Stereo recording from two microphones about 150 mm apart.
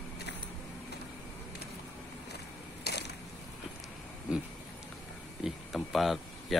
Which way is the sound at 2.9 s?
90° left.